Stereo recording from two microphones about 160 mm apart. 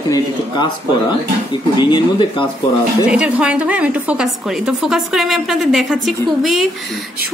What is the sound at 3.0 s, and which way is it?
A woman's voice, 5° right (ahead or behind).